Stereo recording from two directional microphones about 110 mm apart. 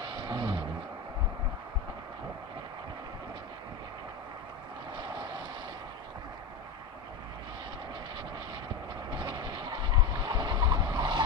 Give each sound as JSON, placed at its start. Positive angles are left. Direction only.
{"t": 0.1, "sound": "a sound", "side_deg": -45}
{"t": 4.9, "sound": "vehicle", "side_deg": -45}
{"t": 9.1, "sound": "vehicle", "side_deg": -45}